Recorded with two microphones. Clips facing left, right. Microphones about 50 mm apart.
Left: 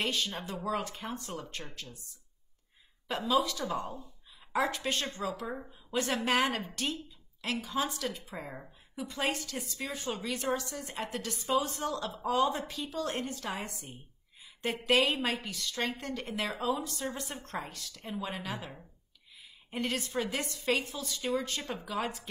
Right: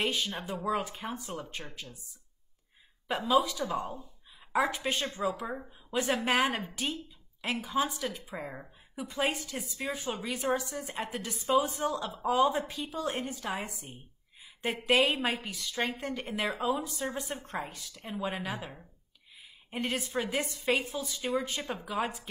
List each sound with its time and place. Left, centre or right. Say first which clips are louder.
0.0 s a woman's voice: right 1 dB; centre
3.3 s a woman's voice: right 2 dB; centre
4.5 s a woman's voice: right 2 dB; centre